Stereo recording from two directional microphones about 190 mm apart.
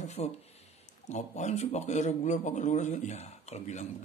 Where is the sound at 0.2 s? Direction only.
35° left (ahead or behind).